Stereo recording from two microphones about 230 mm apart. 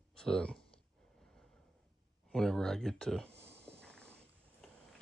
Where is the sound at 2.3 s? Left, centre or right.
Centre.